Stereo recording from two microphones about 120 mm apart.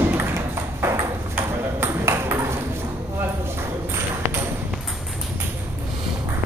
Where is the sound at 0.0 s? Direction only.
20° right (ahead or behind).